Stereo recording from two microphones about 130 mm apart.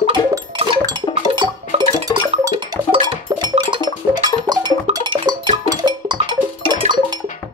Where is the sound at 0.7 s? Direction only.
35° right (ahead or behind).